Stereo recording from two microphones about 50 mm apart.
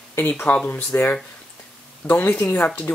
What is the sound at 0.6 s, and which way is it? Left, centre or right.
Speech, left.